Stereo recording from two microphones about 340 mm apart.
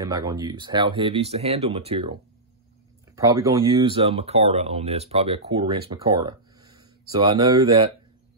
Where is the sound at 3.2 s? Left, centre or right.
Centre.